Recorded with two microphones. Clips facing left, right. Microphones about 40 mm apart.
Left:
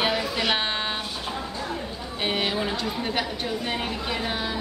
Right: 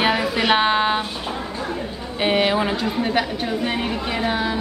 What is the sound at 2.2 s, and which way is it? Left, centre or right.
Speech, right.